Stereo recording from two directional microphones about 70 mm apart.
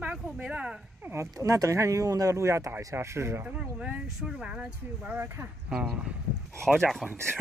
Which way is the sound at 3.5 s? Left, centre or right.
Centre.